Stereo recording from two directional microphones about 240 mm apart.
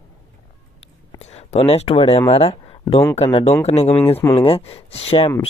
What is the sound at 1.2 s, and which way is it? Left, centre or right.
Speech, left.